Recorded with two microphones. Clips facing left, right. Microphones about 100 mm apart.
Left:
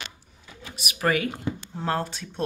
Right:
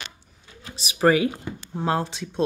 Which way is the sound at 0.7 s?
30° right (ahead or behind).